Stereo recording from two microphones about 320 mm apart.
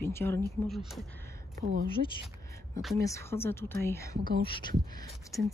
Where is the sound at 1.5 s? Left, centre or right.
Right.